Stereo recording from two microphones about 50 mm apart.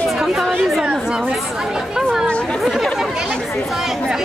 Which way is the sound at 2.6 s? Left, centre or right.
Centre.